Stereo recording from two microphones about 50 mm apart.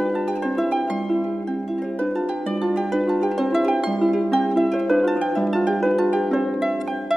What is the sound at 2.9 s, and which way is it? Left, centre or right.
Harp, centre.